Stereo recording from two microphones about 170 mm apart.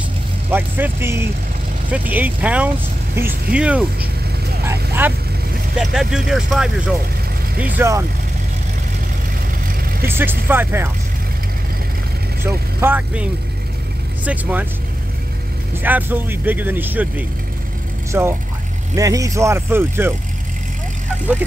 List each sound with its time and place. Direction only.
0.5 s speech: 10° right (ahead or behind)
3.2 s speech: 60° right (ahead or behind)
3.5 s speech: 5° right (ahead or behind)
5.0 s speech: 10° right (ahead or behind)
10.0 s speech: 15° right (ahead or behind)
12.4 s speech: 10° right (ahead or behind)
15.8 s speech: 10° right (ahead or behind)
18.1 s speech: 10° right (ahead or behind)